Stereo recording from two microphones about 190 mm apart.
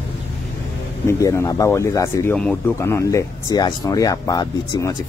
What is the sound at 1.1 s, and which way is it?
Speech, 15° left (ahead or behind).